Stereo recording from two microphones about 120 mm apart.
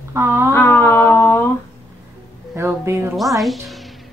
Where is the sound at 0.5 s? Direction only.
20° left (ahead or behind).